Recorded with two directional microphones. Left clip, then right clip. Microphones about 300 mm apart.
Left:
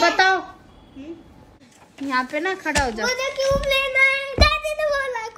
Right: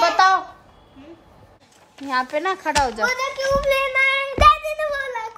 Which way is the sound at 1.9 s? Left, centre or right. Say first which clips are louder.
Right 1 dB; centre.